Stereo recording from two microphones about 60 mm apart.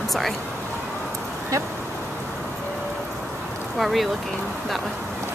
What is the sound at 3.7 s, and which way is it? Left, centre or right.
Speech, centre.